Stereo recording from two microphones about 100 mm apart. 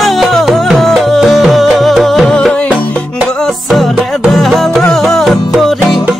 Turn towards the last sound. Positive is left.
turn(degrees=0)  # may be behind; listen again after turning